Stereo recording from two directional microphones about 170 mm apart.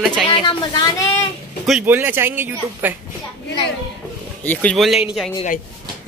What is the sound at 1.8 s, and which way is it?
Speech, 10° right (ahead or behind).